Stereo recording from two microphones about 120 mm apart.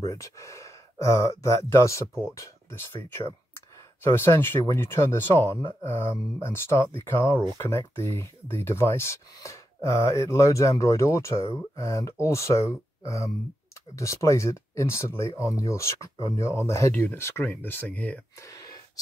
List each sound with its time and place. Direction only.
0.0 s speech: 25° left (ahead or behind)
18.4 s speech: 30° left (ahead or behind)